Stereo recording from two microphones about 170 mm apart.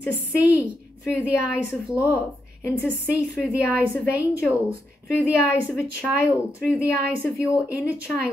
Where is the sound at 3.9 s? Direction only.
15° left (ahead or behind).